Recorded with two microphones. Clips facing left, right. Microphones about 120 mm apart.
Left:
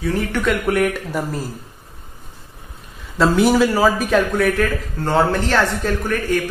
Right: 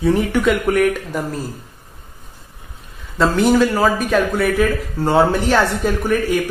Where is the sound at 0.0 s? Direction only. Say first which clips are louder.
Right 5 dB; 20° right (ahead or behind).